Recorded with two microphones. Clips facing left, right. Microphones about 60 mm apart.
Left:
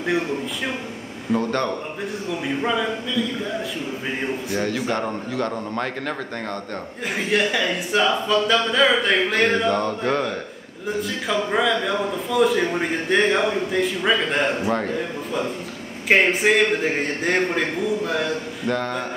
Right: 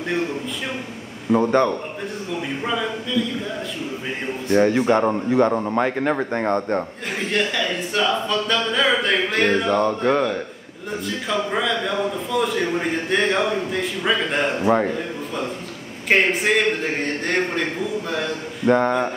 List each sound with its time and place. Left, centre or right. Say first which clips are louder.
1.3 s a man's voice: right 5 dB; centre
2.6 s speech: left 2 dB; centre
4.6 s a man's voice: right 9 dB; right
7.2 s speech: left 1 dB; centre
14.6 s a man's voice: right 4 dB; centre
16.1 s speech: left 1 dB; centre
18.7 s a man's voice: right 7 dB; right